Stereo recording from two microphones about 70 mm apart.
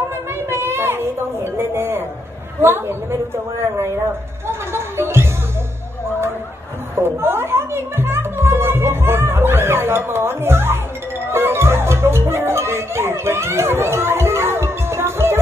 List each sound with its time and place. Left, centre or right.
0.5 s music: right
2.6 s a woman's voice: right
4.5 s music: right
7.0 s music: right